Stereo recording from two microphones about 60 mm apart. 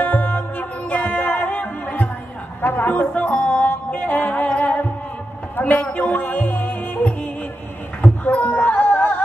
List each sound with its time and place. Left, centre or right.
0.0 s music: left
2.6 s a woman's voice: left
3.3 s music: left
5.6 s a man's voice: left
6.1 s music: left